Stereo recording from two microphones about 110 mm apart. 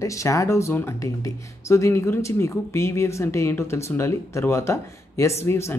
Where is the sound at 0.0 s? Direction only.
30° left (ahead or behind).